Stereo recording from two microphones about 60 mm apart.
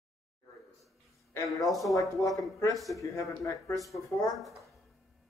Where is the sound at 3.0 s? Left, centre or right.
Left.